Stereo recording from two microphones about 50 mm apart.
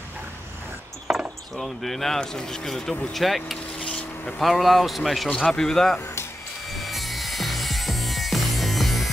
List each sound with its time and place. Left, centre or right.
1.6 s speech: centre
3.8 s a sound: centre
4.4 s speech: centre
5.5 s speech: centre
6.7 s wood: centre